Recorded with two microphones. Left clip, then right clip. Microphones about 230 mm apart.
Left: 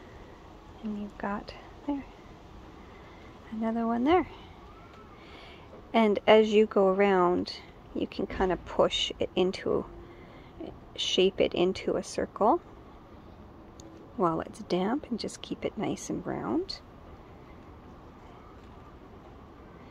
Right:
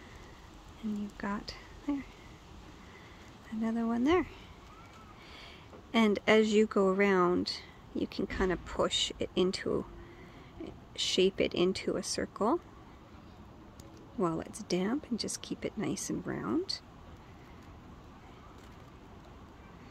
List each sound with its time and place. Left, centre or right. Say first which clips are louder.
1.1 s speech: left 7 dB; right
3.6 s speech: left 4 dB; centre
5.9 s speech: left 5 dB; centre
14.2 s speech: left 5 dB; centre